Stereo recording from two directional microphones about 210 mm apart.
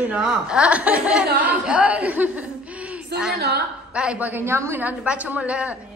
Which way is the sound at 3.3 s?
50° right (ahead or behind).